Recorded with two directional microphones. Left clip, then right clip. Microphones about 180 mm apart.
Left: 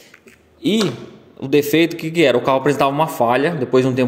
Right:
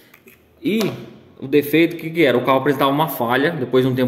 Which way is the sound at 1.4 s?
20° left (ahead or behind).